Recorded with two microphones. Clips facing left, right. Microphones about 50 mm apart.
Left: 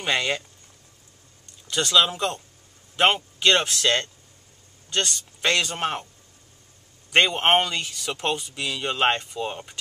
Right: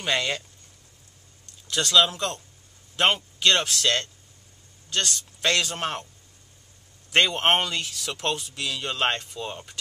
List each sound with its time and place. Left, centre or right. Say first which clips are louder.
0.0 s speech: left 2 dB; centre
1.7 s speech: even; centre
4.8 s a sound: left 2 dB; centre
5.1 s speech: even; centre
7.1 s speech: left 2 dB; centre